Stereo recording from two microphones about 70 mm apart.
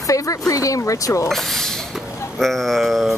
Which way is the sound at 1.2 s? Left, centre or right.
Centre.